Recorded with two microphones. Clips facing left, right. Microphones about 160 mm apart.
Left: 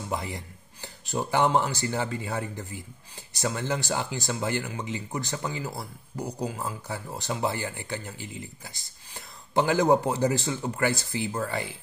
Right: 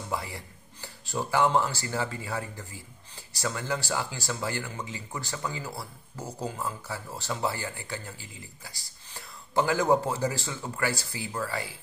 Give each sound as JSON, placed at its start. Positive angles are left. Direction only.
{"t": 0.1, "sound": "speech", "side_deg": 20}